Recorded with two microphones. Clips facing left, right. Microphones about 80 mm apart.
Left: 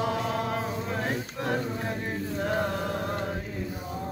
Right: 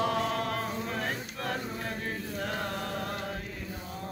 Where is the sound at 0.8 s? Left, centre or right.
Centre.